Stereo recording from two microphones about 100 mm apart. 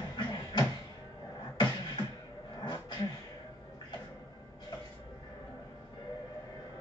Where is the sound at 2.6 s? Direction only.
45° left (ahead or behind).